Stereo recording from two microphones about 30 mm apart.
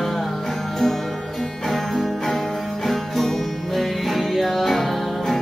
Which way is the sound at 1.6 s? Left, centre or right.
Centre.